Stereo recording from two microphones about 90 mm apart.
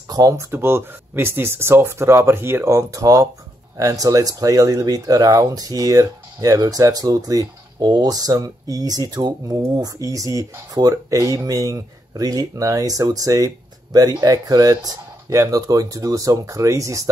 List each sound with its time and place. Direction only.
0.1 s speech: 40° right (ahead or behind)